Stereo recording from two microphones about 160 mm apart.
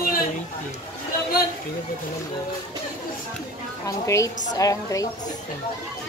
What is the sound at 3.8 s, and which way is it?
A woman's voice, 20° left (ahead or behind).